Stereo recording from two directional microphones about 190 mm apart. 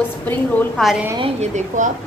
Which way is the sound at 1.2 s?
40° right (ahead or behind).